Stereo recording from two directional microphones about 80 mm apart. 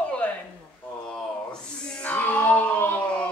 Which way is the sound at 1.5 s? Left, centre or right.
Centre.